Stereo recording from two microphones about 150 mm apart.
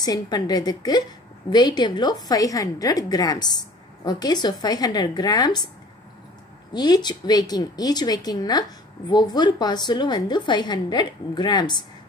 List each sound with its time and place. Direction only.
0.0 s a woman's voice: 25° left (ahead or behind)
6.7 s a woman's voice: 30° left (ahead or behind)